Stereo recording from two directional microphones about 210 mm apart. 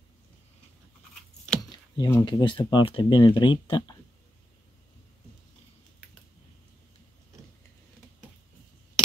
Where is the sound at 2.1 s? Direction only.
15° left (ahead or behind).